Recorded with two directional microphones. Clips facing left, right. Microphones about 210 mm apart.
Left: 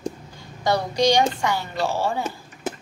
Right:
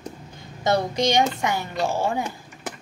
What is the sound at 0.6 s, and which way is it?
A woman's voice, 20° right (ahead or behind).